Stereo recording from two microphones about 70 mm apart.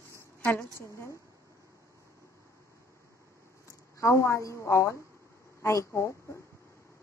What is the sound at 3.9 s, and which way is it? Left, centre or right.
A woman's voice, left.